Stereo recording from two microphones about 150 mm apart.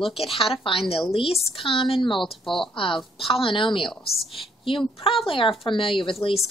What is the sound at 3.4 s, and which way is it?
A woman's voice, 35° left (ahead or behind).